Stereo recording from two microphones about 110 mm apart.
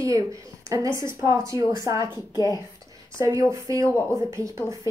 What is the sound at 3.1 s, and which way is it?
A woman's voice, 30° right (ahead or behind).